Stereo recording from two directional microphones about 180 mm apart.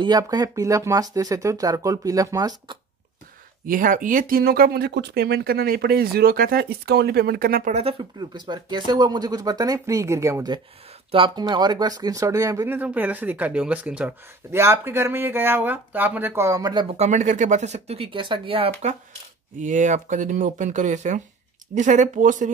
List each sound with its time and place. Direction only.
0.0 s speech: 25° right (ahead or behind)
3.6 s speech: 50° right (ahead or behind)
7.7 s speech: 30° right (ahead or behind)
16.9 s speech: 40° right (ahead or behind)